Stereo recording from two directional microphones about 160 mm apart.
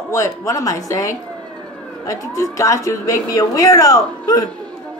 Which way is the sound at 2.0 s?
20° left (ahead or behind).